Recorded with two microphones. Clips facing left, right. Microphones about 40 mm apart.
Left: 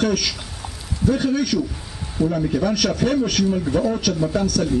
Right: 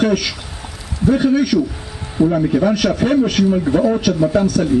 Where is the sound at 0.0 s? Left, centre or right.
Centre.